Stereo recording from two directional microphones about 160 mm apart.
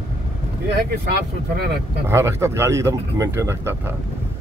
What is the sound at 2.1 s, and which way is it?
Speech, 15° right (ahead or behind).